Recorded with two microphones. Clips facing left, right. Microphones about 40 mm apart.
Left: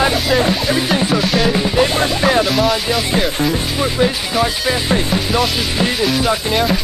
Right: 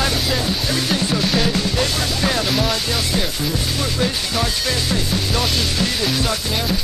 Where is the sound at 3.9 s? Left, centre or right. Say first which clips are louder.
Left 6 dB; centre.